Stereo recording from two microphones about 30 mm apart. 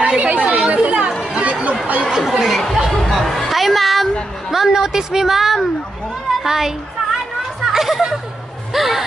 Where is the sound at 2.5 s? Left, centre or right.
Centre.